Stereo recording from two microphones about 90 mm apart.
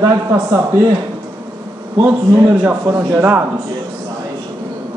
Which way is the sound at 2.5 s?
25° right (ahead or behind).